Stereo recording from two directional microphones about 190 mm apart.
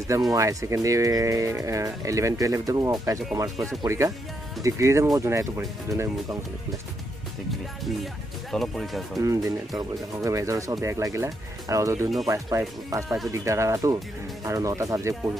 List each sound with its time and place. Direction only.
0.3 s speech: 15° right (ahead or behind)
3.5 s speech: centre (ahead or behind)
3.8 s speech: 15° right (ahead or behind)
7.8 s speech: centre (ahead or behind)
9.2 s speech: 15° right (ahead or behind)